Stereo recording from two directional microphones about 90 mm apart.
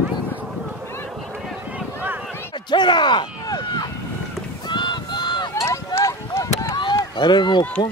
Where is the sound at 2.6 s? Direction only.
60° left (ahead or behind).